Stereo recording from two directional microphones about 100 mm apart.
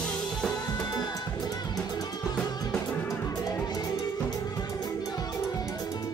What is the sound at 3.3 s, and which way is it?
Music, 40° left (ahead or behind).